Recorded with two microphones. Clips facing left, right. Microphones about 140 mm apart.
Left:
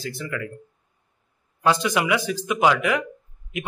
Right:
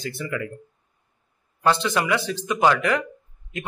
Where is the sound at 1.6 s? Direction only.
10° left (ahead or behind).